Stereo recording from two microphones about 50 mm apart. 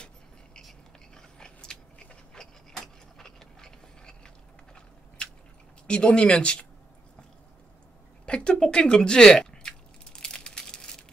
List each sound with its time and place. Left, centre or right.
0.6 s biting: centre
2.8 s vehicle: centre
4.7 s a sound: centre
5.9 s speech: centre
8.3 s biting: centre